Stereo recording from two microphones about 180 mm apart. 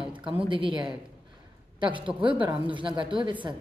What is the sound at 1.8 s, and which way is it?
Speech, 25° right (ahead or behind).